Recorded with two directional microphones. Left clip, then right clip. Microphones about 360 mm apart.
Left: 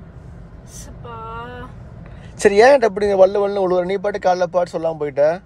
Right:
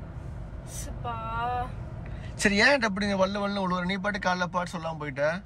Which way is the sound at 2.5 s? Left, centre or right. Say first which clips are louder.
Left 11 dB; centre.